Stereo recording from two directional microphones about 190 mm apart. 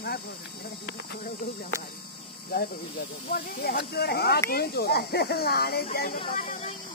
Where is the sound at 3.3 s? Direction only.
50° left (ahead or behind).